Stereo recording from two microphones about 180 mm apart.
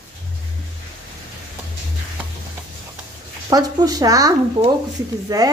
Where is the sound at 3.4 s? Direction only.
20° right (ahead or behind).